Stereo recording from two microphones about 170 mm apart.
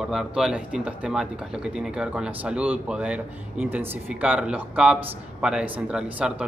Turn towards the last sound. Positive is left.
turn(degrees=-5)  # may be behind; listen again after turning